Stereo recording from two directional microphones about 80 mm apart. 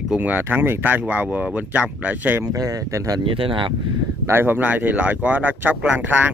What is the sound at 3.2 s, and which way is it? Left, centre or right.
Speech, right.